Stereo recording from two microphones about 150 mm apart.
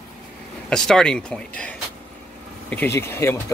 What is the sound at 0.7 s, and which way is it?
Speech, 5° left (ahead or behind).